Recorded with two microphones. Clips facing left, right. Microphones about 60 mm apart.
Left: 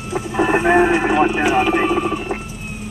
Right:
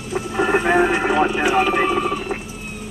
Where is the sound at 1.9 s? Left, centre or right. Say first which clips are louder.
Left 1 dB; left.